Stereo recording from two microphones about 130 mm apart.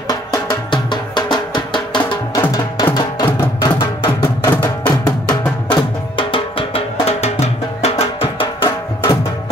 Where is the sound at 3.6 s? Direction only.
35° left (ahead or behind).